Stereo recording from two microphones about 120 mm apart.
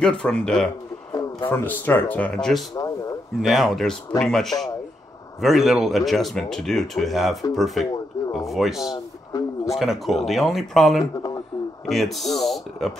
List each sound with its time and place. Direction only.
0.0 s speech: 5° left (ahead or behind)
2.7 s speech: 30° left (ahead or behind)
3.4 s speech: centre (ahead or behind)
9.3 s speech: 30° left (ahead or behind)
9.8 s speech: centre (ahead or behind)
11.2 s a sound: 30° left (ahead or behind)
11.9 s speech: centre (ahead or behind)